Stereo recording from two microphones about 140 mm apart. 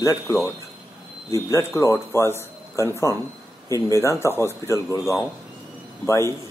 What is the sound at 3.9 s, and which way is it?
Speech, 20° left (ahead or behind).